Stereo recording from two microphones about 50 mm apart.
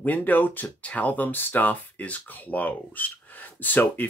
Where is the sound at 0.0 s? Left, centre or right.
Left.